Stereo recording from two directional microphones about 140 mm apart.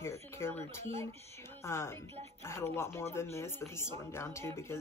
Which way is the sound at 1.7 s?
20° left (ahead or behind).